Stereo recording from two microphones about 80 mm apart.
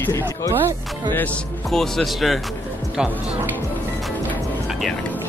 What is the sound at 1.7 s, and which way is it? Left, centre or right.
Speech, centre.